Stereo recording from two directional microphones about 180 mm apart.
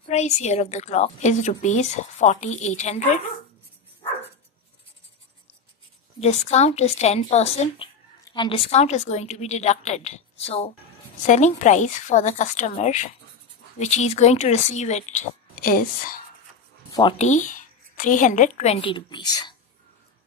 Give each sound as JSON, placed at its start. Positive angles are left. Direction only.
{"t": 0.0, "sound": "a woman's voice", "side_deg": 40}
{"t": 6.2, "sound": "a woman's voice", "side_deg": 35}
{"t": 17.2, "sound": "a woman's voice", "side_deg": 45}